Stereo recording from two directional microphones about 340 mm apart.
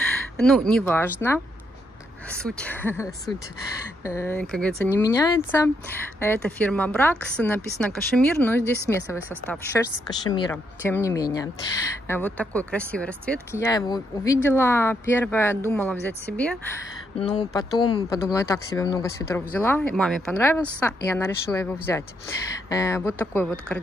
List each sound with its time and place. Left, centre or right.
0.4 s speech: centre
2.2 s speech: centre